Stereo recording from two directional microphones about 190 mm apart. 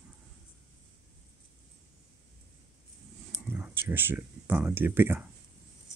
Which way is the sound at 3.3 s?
10° right (ahead or behind).